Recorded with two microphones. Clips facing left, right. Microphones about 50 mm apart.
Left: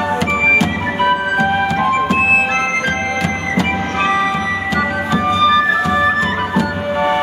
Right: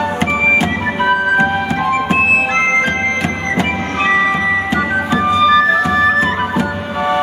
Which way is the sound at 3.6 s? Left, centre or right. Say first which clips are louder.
Left 1 dB; centre.